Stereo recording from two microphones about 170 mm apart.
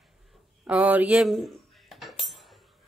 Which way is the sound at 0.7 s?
10° right (ahead or behind).